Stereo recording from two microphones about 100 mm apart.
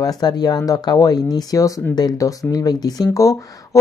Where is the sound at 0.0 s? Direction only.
40° left (ahead or behind).